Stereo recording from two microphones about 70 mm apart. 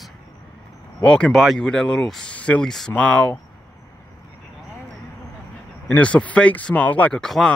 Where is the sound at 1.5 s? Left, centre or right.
Centre.